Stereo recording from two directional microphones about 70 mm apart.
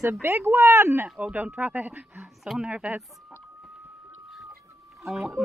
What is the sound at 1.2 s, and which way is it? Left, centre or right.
Speech, right.